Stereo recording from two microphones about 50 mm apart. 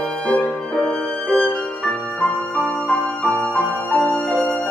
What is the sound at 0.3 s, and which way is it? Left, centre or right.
Music, left.